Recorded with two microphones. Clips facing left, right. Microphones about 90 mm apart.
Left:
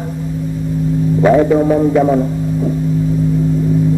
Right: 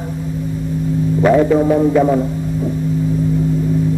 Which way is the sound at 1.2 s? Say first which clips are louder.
Left 1 dB; 5° left (ahead or behind).